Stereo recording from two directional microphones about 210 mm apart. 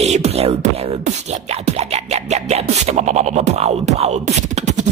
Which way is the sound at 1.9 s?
30° right (ahead or behind).